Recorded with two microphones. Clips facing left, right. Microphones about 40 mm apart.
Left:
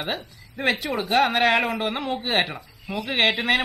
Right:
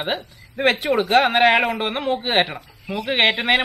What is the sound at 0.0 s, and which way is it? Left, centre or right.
A woman's voice, right.